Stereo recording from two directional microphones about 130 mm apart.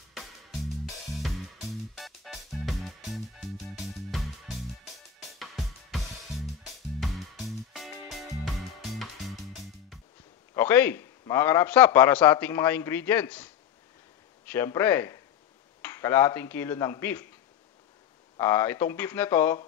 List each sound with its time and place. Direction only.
2.0 s music: centre (ahead or behind)
5.4 s music: centre (ahead or behind)
7.7 s music: centre (ahead or behind)
10.5 s a man's voice: 15° left (ahead or behind)
15.8 s dishes: 20° left (ahead or behind)
18.4 s dishes: 20° left (ahead or behind)